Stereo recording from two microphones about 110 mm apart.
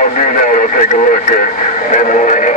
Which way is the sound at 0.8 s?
90° left.